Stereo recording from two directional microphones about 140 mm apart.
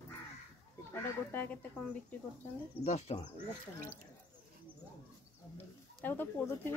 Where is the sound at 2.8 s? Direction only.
50° left (ahead or behind).